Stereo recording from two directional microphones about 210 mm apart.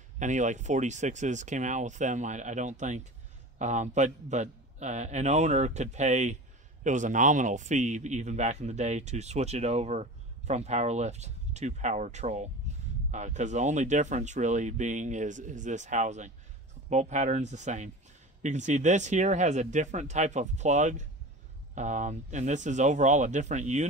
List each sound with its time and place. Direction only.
0.2 s a man's voice: 35° right (ahead or behind)